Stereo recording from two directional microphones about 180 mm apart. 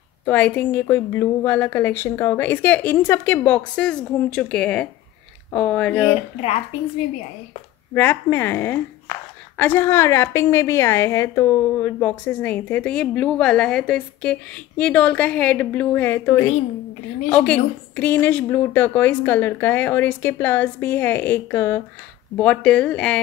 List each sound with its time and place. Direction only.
0.2 s a woman's voice: 10° left (ahead or behind)
6.0 s speech: 35° left (ahead or behind)
7.9 s a woman's voice: 10° left (ahead or behind)